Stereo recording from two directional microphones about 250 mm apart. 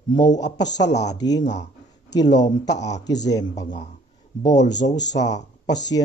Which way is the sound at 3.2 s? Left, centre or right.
Centre.